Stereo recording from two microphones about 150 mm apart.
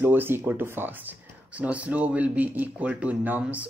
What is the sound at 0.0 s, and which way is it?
Speech, 15° right (ahead or behind).